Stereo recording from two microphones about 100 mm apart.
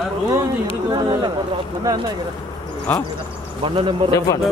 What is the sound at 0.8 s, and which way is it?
Speech, 45° right (ahead or behind).